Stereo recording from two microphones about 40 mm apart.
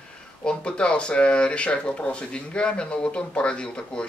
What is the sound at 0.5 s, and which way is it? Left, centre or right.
Speech, left.